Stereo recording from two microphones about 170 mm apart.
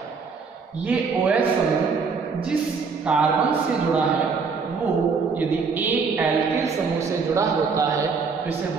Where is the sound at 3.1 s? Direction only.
5° right (ahead or behind).